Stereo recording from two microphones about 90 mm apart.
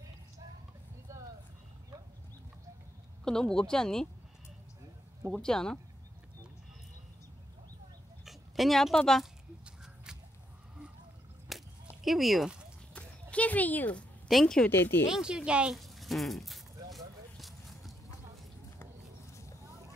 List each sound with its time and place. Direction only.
3.3 s speech: 5° left (ahead or behind)
5.3 s speech: 5° left (ahead or behind)
8.3 s speech: centre (ahead or behind)
11.5 s a sound: centre (ahead or behind)
12.0 s speech: centre (ahead or behind)
12.9 s speech: 15° left (ahead or behind)
14.2 s speech: 5° left (ahead or behind)
15.0 s speech: 5° right (ahead or behind)
15.7 s a sound: centre (ahead or behind)